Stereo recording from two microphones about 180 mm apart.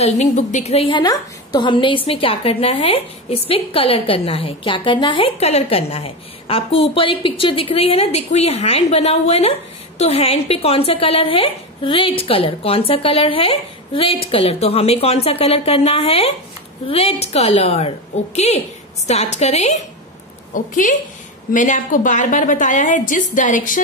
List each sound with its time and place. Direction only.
0.0 s a woman's voice: 40° left (ahead or behind)